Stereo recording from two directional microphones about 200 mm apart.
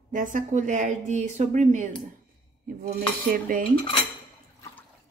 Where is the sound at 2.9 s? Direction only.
45° right (ahead or behind).